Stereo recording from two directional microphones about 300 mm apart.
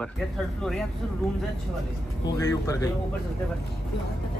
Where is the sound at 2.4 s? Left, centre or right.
Centre.